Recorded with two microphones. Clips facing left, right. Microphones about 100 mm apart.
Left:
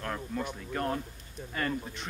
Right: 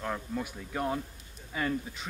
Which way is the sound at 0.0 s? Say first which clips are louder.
Even; 10° right (ahead or behind).